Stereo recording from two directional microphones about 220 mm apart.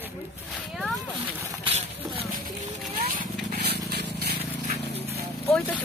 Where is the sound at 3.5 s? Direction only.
45° right (ahead or behind).